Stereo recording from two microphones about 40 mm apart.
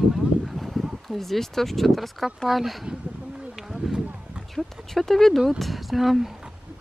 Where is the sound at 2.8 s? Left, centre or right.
Centre.